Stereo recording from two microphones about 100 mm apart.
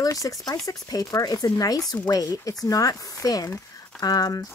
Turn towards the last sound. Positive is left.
turn(degrees=40)  # may be behind; listen again after turning